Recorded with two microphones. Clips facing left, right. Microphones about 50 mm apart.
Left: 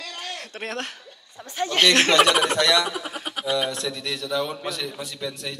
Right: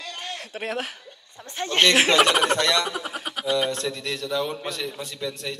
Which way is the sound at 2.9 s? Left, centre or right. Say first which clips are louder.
Even; centre.